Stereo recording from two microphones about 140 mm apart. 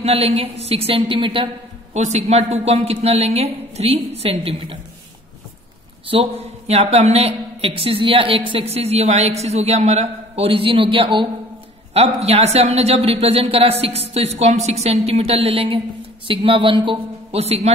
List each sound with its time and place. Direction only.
0.0 s a woman's voice: 45° right (ahead or behind)
2.0 s a woman's voice: 55° right (ahead or behind)
6.0 s a woman's voice: 45° right (ahead or behind)